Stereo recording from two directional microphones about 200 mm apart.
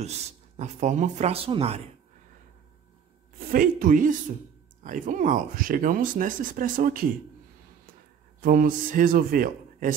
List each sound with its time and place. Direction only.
0.0 s speech: 35° right (ahead or behind)
3.3 s speech: 45° right (ahead or behind)
8.4 s speech: 45° right (ahead or behind)